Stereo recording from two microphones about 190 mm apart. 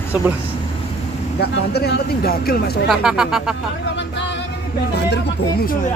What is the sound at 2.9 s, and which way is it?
Speech, 5° right (ahead or behind).